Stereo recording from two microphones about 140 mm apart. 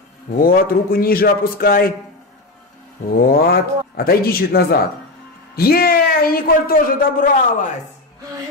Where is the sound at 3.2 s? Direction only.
90° left.